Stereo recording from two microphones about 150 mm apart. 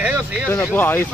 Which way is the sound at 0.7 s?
15° left (ahead or behind).